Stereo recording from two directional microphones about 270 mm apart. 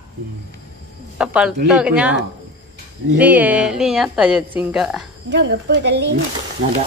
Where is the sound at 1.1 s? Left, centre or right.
Centre.